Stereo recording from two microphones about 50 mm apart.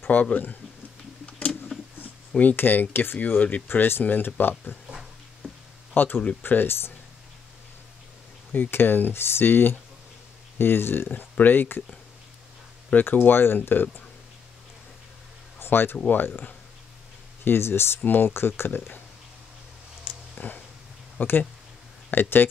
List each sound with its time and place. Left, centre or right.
0.1 s speech: left
1.2 s a sound: left
2.5 s speech: left
3.6 s speech: left
4.0 s speech: left
4.8 s dog: centre
5.9 s speech: left
8.6 s speech: left
12.9 s speech: left
15.6 s speech: left
17.5 s speech: left
18.0 s speech: left
20.1 s a sound: left
21.2 s speech: left